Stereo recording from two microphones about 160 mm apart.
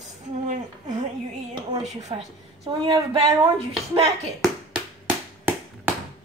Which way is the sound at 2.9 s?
30° right (ahead or behind).